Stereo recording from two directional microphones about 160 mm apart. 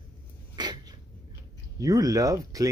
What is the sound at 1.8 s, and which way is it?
Speech, 20° right (ahead or behind).